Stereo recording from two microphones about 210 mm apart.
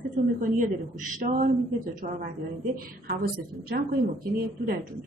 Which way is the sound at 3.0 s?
45° right (ahead or behind).